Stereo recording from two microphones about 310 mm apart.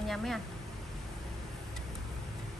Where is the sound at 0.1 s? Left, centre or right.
Centre.